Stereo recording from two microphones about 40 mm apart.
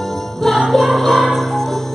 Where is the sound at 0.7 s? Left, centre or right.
Centre.